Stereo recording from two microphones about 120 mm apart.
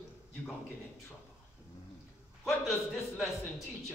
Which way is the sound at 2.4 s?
Centre (ahead or behind).